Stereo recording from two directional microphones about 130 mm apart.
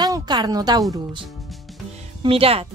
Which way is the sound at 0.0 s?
30° right (ahead or behind).